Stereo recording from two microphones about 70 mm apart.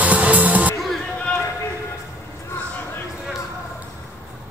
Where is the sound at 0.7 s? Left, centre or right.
Centre.